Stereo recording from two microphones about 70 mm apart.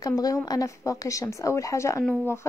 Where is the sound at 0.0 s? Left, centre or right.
Left.